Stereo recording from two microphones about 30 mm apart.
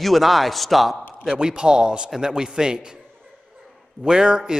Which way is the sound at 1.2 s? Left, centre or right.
Right.